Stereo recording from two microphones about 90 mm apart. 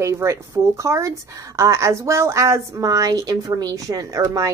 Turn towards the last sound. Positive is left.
turn(degrees=-35)  # may be behind; listen again after turning